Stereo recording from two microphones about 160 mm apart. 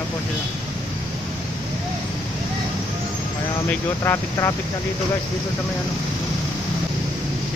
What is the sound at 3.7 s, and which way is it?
Speech, 15° left (ahead or behind).